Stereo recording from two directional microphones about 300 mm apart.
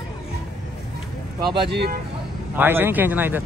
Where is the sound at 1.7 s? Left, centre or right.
Right.